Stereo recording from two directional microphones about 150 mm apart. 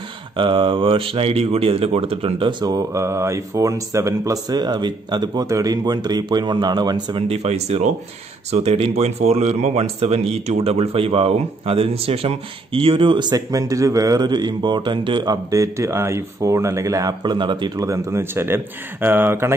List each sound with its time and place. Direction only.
0.4 s speech: 35° right (ahead or behind)
7.2 s speech: 45° right (ahead or behind); by 19.5 s 15° right (ahead or behind)